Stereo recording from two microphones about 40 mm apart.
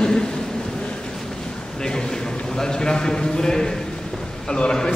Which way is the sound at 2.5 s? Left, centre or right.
Centre.